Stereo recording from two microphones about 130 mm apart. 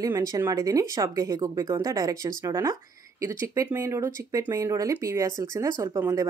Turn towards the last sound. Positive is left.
turn(degrees=-25)  # may be behind; listen again after turning